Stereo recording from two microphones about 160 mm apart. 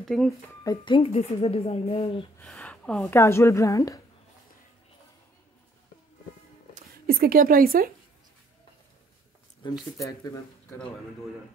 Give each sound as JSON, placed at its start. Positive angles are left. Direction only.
{"t": 0.0, "sound": "speech", "side_deg": 0}
{"t": 0.7, "sound": "speech", "side_deg": 30}
{"t": 2.3, "sound": "a sound", "side_deg": 5}
{"t": 3.1, "sound": "a woman's voice", "side_deg": 15}
{"t": 6.7, "sound": "speech", "side_deg": -65}
{"t": 9.6, "sound": "speech", "side_deg": 30}
{"t": 9.9, "sound": "speech", "side_deg": 20}